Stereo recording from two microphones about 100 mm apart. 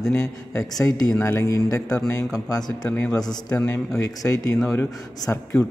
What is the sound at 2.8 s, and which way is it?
Speech, 10° left (ahead or behind).